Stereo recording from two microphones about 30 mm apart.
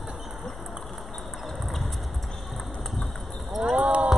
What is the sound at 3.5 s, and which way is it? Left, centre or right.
Clip-clop, centre.